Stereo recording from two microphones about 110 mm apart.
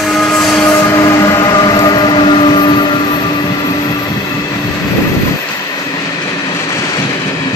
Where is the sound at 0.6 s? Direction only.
20° left (ahead or behind); by 3.3 s 40° left (ahead or behind).